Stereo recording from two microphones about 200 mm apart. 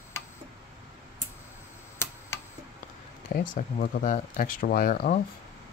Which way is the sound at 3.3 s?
45° left (ahead or behind).